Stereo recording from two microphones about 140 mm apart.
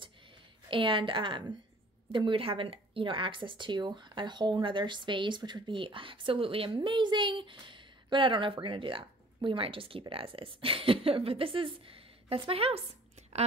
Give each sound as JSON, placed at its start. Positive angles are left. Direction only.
{"t": 0.7, "sound": "speech", "side_deg": -40}